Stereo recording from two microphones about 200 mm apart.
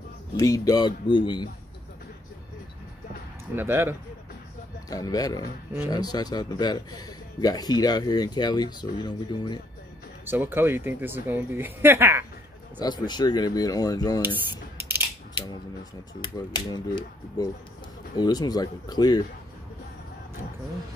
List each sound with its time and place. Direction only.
0.4 s a man's voice: 15° left (ahead or behind)
3.5 s speech: 10° right (ahead or behind)
4.8 s a man's voice: 20° left (ahead or behind)
10.2 s speech: 10° right (ahead or behind)
12.7 s a man's voice: 20° left (ahead or behind)
14.8 s mechanisms: 10° right (ahead or behind)
15.3 s a man's voice: 20° left (ahead or behind)